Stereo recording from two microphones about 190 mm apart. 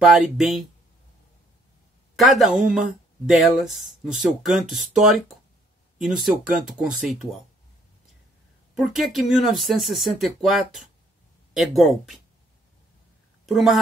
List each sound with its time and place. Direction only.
0.0 s speech: centre (ahead or behind)
2.1 s speech: centre (ahead or behind)
8.7 s speech: centre (ahead or behind)
13.5 s speech: centre (ahead or behind)